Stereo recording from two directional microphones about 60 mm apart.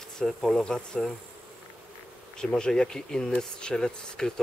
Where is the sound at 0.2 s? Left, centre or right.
Centre.